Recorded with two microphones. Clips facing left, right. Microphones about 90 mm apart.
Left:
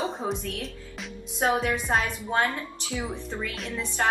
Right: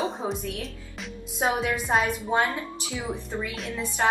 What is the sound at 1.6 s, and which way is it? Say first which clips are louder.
Speech: right 1 dB; 5° right (ahead or behind).